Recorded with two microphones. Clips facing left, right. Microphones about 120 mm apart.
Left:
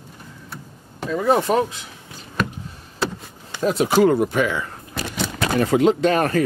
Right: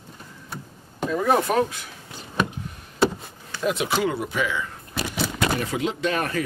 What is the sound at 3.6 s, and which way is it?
Speech, 40° left (ahead or behind).